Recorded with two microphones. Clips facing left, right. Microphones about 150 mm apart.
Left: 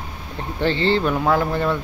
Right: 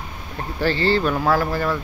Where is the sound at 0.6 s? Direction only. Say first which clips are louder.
Even; 20° left (ahead or behind).